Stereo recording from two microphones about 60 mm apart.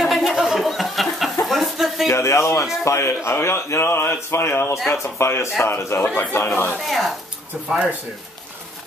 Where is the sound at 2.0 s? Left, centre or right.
Left.